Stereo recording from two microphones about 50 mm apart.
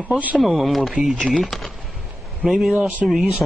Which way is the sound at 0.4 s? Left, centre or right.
Centre.